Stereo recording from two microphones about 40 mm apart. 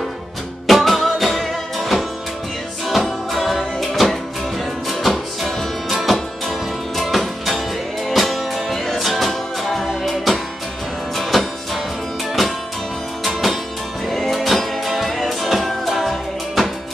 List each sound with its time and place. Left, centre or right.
0.7 s music: centre